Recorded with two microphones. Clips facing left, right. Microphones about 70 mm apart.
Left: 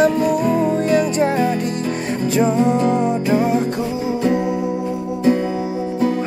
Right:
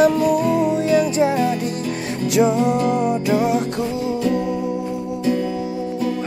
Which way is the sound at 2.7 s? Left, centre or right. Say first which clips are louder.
Left 2 dB; left.